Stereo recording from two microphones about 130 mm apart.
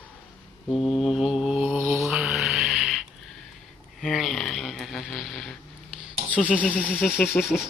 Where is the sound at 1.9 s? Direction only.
Centre (ahead or behind).